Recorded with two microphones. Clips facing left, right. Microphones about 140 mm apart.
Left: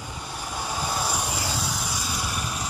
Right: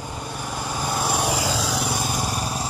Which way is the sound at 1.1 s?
80° right.